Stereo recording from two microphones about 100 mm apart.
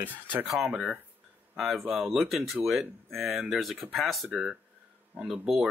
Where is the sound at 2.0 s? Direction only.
Centre (ahead or behind).